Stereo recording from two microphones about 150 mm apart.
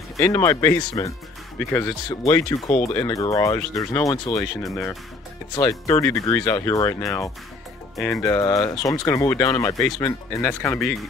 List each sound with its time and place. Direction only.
0.3 s speech: 20° left (ahead or behind)
4.6 s speech: 5° left (ahead or behind)
5.5 s speech: 25° left (ahead or behind)
7.9 s speech: 5° left (ahead or behind)
8.2 s speech: 20° left (ahead or behind); by 11.1 s centre (ahead or behind)